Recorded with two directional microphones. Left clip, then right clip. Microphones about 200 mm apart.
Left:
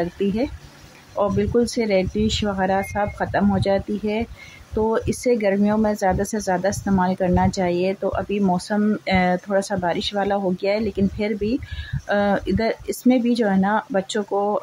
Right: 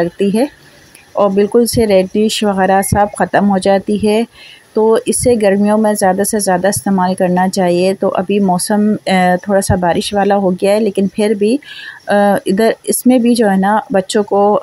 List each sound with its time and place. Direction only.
0.0 s speech: 25° right (ahead or behind)